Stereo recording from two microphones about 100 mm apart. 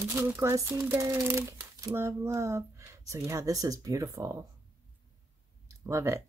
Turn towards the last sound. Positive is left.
turn(degrees=-30)  # may be behind; listen again after turning